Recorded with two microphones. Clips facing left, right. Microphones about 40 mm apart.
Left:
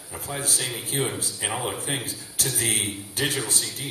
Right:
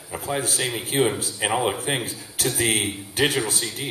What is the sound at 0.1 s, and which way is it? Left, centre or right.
A man's voice, right.